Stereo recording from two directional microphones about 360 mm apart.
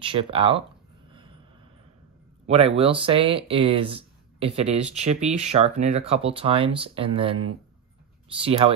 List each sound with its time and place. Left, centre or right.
0.0 s speech: centre
2.4 s speech: centre